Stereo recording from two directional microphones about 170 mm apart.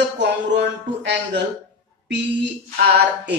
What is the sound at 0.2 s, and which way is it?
Speech, 90° right.